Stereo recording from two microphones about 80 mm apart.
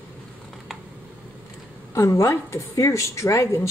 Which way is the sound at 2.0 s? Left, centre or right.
Left.